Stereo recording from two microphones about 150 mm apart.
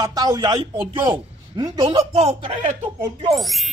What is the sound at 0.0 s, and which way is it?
A man's voice, 25° right (ahead or behind).